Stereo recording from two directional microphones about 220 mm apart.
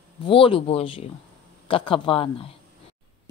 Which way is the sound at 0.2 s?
25° left (ahead or behind).